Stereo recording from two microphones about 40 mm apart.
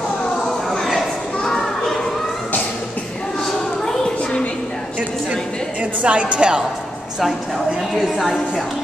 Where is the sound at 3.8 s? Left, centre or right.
Centre.